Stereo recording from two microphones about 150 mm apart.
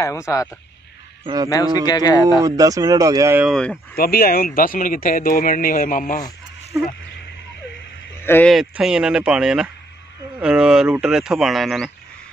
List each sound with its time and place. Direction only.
0.0 s a man's voice: 20° left (ahead or behind)
1.2 s a man's voice: 25° right (ahead or behind)
1.5 s a man's voice: 25° left (ahead or behind)
2.4 s speech: 25° right (ahead or behind)
3.4 s speech: centre (ahead or behind)
3.9 s speech: 85° left; by 6.2 s 65° left (ahead or behind)
8.2 s a sound: 15° left (ahead or behind)
8.5 s speech: centre (ahead or behind)